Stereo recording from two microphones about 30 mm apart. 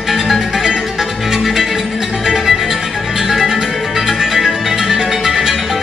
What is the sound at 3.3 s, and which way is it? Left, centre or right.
Music, centre.